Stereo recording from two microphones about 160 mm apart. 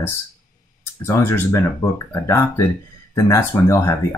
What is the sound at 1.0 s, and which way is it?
Speech, 15° left (ahead or behind).